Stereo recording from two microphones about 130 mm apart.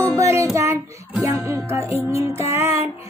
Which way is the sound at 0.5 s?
20° right (ahead or behind).